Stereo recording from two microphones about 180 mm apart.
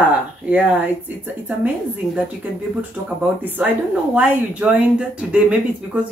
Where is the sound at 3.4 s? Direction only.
10° right (ahead or behind).